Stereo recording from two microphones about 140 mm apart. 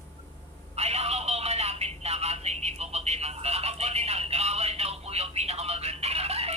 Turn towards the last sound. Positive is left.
turn(degrees=-45)  # may be behind; listen again after turning